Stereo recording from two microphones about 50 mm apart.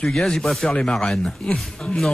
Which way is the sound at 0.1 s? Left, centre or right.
Centre.